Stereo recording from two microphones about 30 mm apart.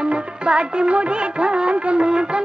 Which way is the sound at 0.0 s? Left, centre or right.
Right.